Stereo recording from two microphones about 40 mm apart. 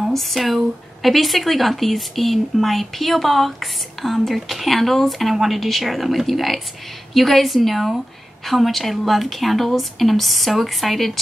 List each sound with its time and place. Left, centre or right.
0.1 s speech: centre